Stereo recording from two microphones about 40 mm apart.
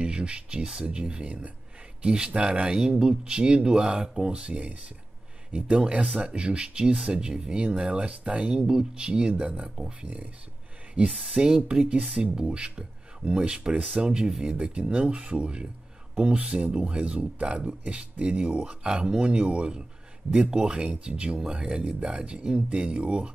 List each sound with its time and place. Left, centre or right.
0.0 s speech: right
2.0 s speech: right
5.5 s speech: right
10.0 s speech: right
11.2 s speech: centre
16.8 s speech: right